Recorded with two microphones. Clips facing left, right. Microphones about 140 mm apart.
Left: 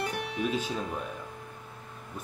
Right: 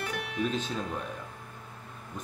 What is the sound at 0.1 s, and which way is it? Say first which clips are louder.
Music: left 1 dB; 35° left (ahead or behind).